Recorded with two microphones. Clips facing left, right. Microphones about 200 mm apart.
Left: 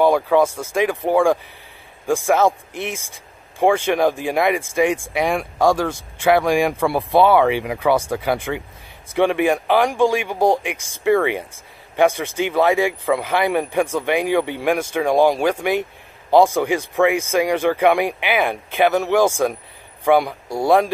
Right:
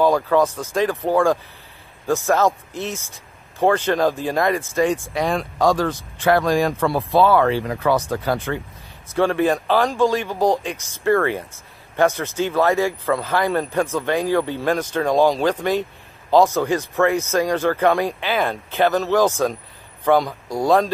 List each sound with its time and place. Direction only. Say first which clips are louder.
0.0 s speech: left 1 dB; 15° left (ahead or behind)